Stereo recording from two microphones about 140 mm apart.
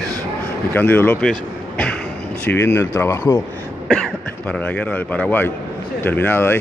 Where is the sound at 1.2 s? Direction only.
10° left (ahead or behind).